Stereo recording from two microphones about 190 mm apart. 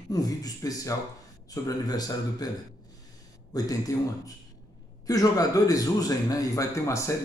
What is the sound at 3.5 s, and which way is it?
A man's voice, 20° left (ahead or behind).